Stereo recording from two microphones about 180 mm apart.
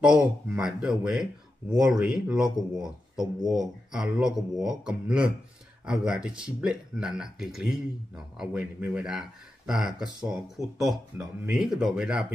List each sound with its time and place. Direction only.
0.2 s speech: 5° right (ahead or behind)